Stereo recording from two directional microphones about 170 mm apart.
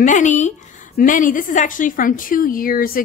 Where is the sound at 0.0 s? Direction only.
45° left (ahead or behind).